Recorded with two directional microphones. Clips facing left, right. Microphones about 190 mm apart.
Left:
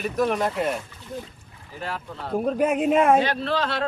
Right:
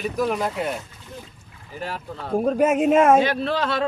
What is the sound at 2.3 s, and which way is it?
A man's voice, 45° right (ahead or behind).